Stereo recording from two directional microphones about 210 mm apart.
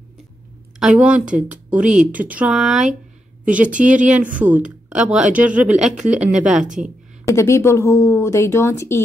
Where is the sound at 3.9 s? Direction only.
35° right (ahead or behind).